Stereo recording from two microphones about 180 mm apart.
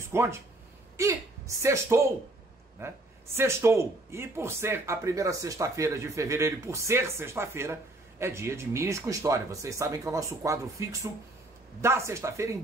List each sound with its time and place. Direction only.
0.1 s a man's voice: 15° right (ahead or behind)